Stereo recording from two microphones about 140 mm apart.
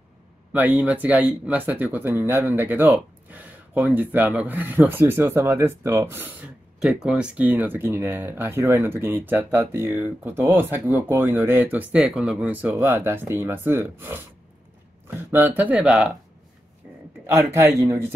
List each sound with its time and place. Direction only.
0.5 s speech: 10° right (ahead or behind)
17.3 s speech: 20° right (ahead or behind)